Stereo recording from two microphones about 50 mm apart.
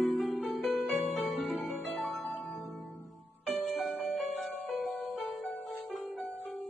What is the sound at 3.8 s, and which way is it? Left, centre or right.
Music, centre.